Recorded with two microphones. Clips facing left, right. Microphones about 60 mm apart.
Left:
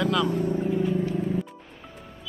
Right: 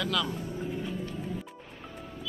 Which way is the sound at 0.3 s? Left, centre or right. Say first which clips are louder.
Left 11 dB; left.